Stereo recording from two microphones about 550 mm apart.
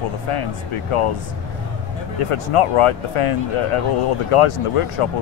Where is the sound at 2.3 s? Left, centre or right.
Left.